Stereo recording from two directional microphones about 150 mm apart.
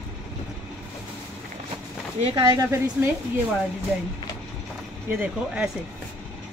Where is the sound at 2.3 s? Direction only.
20° right (ahead or behind).